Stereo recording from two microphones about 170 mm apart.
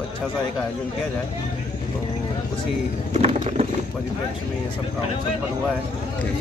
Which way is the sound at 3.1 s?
35° right (ahead or behind).